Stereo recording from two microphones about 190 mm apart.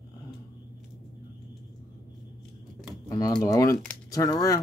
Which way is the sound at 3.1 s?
20° left (ahead or behind).